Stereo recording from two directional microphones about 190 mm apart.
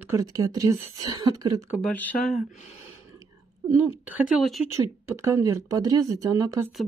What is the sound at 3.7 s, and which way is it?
Speech, 5° right (ahead or behind).